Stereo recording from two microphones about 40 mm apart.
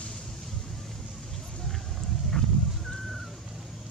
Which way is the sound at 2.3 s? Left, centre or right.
Centre.